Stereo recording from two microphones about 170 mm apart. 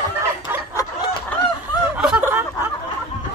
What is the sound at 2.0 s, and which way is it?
Snicker, 10° right (ahead or behind).